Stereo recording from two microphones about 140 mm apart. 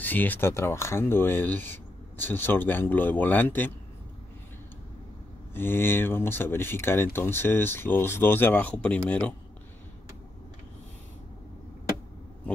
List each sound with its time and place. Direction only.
0.0 s speech: 10° left (ahead or behind)
5.5 s speech: 15° left (ahead or behind)